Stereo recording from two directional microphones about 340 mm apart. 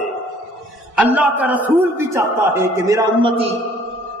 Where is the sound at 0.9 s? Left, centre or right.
Centre.